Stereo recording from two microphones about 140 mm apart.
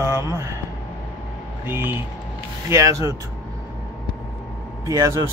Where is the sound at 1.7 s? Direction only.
15° right (ahead or behind).